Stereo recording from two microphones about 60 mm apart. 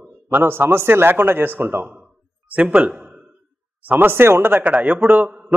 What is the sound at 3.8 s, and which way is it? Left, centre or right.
Speech, right.